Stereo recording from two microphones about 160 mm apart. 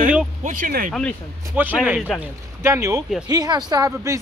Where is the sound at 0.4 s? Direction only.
55° right (ahead or behind).